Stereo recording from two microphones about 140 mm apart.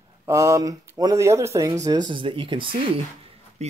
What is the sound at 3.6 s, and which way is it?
Speech, 50° right (ahead or behind).